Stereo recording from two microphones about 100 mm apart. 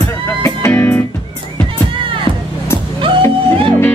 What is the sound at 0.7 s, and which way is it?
Music, 20° left (ahead or behind).